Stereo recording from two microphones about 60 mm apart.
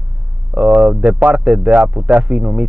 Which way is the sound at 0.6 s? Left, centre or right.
Right.